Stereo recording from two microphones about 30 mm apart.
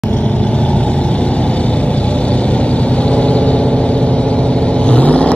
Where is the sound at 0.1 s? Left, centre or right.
Left.